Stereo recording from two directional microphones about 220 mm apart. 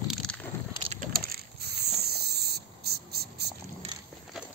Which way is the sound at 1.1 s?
45° right (ahead or behind).